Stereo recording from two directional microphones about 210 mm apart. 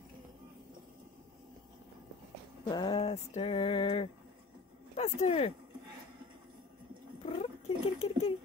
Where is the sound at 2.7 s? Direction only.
25° left (ahead or behind).